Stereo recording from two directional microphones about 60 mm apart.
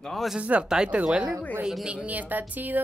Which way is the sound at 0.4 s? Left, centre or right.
Right.